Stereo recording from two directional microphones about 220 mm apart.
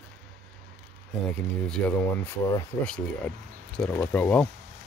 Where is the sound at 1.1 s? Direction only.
5° left (ahead or behind).